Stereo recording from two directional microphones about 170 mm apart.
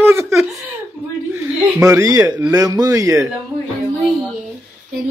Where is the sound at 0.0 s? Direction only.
15° right (ahead or behind).